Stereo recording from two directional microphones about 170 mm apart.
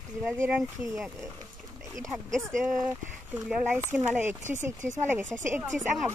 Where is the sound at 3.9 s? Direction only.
15° right (ahead or behind).